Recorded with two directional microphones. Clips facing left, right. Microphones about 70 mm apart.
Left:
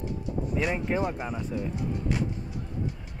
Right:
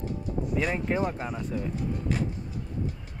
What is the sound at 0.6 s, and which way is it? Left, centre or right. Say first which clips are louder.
Speech: even; centre.